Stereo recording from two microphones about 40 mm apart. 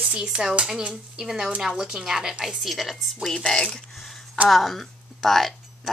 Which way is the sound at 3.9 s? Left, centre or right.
Centre.